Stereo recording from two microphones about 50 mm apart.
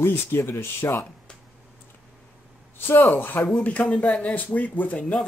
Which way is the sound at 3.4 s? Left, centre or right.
Left.